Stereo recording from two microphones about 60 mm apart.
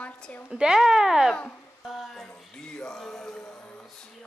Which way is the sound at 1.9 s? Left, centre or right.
Centre.